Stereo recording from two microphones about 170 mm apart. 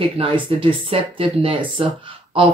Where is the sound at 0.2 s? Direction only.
30° right (ahead or behind).